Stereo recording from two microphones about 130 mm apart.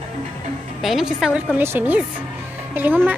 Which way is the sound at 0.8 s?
5° right (ahead or behind).